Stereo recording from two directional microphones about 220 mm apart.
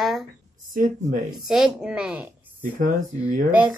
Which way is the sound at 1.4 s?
5° right (ahead or behind).